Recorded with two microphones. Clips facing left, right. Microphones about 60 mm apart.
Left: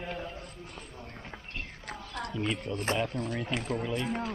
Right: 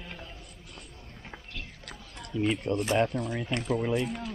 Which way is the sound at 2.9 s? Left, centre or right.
Centre.